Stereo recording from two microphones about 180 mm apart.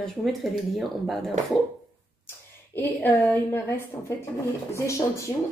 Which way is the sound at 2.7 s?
10° left (ahead or behind).